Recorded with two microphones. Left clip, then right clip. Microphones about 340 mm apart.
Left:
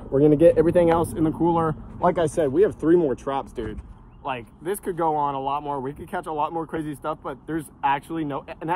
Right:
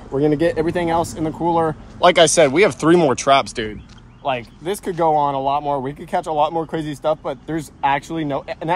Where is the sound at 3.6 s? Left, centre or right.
Right.